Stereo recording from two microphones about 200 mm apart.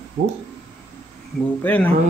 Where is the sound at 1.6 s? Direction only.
10° left (ahead or behind).